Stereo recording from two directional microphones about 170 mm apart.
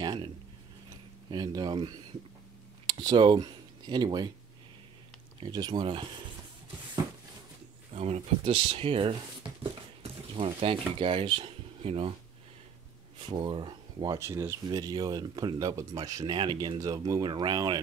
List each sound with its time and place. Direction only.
0.0 s a sound: 25° right (ahead or behind)
1.3 s speech: 25° right (ahead or behind)
5.4 s speech: 30° right (ahead or behind)
7.9 s speech: 40° right (ahead or behind)
13.3 s speech: 30° right (ahead or behind)